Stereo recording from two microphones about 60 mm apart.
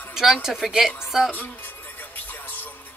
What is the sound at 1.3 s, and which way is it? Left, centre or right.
Music, left.